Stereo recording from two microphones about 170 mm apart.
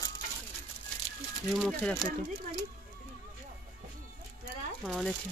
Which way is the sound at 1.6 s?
Centre (ahead or behind).